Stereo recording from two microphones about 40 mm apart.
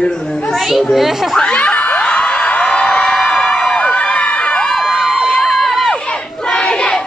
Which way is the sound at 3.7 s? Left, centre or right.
Left.